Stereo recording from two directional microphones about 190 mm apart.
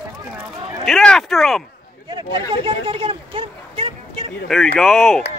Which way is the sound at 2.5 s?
25° right (ahead or behind).